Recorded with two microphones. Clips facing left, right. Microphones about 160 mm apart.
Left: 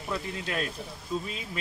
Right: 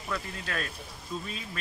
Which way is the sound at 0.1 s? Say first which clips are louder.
Left 2 dB; 20° left (ahead or behind).